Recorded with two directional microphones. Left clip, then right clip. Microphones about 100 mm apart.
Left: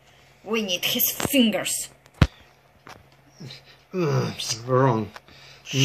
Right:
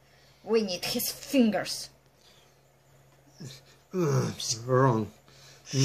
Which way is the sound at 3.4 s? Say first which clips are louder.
Left 6 dB; 35° right (ahead or behind).